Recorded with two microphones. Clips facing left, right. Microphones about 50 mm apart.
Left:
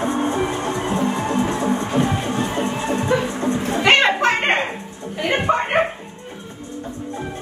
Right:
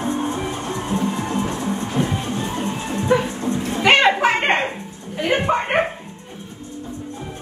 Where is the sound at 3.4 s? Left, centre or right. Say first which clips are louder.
Left 2 dB; left.